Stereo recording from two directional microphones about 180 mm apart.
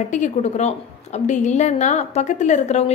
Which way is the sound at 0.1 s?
40° left (ahead or behind).